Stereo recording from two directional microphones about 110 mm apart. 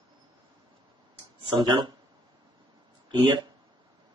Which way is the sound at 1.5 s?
45° right (ahead or behind).